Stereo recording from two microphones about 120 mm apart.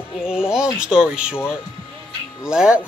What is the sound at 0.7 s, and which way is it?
Speech, 5° right (ahead or behind).